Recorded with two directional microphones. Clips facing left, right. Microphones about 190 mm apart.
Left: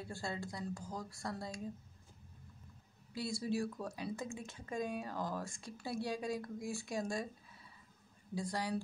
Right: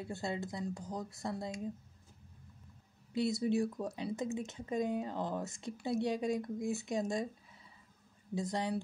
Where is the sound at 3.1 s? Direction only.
20° right (ahead or behind).